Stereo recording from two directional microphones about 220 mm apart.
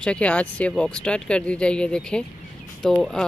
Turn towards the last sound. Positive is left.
turn(degrees=5)  # may be behind; listen again after turning